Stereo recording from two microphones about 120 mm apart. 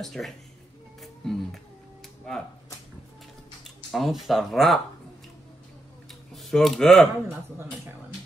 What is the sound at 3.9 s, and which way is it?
Speech, centre (ahead or behind).